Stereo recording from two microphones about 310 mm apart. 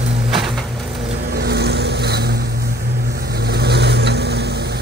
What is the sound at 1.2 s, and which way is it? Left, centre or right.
Vehicle, right.